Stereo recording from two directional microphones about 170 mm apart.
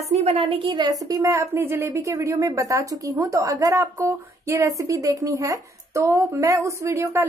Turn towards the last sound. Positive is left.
turn(degrees=-15)  # may be behind; listen again after turning